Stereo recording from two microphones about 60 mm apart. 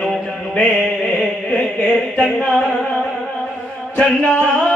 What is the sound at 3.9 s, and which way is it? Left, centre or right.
Music, centre.